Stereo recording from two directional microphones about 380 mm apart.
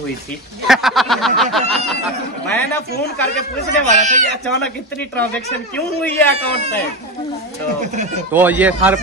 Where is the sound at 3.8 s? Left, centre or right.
Centre.